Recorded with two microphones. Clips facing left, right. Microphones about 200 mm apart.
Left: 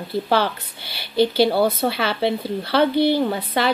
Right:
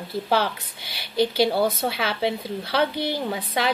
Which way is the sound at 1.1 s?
30° left (ahead or behind).